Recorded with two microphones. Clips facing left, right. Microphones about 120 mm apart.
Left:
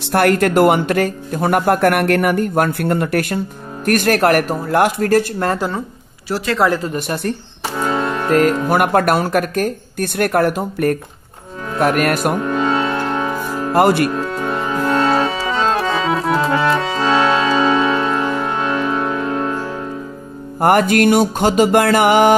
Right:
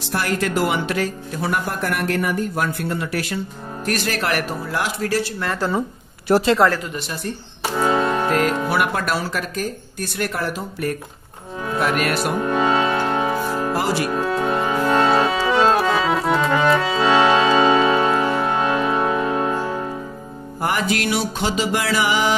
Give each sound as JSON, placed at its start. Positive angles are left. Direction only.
{"t": 0.1, "sound": "speech", "side_deg": 60}
{"t": 6.3, "sound": "speech", "side_deg": -55}
{"t": 7.0, "sound": "speech", "side_deg": 55}
{"t": 7.7, "sound": "music", "side_deg": -10}
{"t": 8.3, "sound": "speech", "side_deg": 45}
{"t": 12.4, "sound": "music", "side_deg": -5}
{"t": 13.7, "sound": "speech", "side_deg": 55}
{"t": 14.1, "sound": "music", "side_deg": -5}
{"t": 15.8, "sound": "accordion", "side_deg": 0}
{"t": 16.5, "sound": "music", "side_deg": 0}
{"t": 17.5, "sound": "music", "side_deg": -15}
{"t": 20.6, "sound": "speech", "side_deg": 55}